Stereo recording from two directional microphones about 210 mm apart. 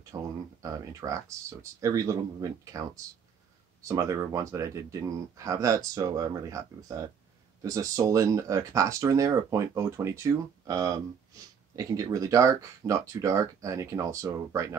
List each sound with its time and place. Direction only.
0.1 s speech: 15° right (ahead or behind)